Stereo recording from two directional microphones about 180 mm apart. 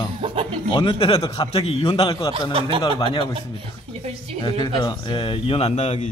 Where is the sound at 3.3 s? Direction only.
35° right (ahead or behind).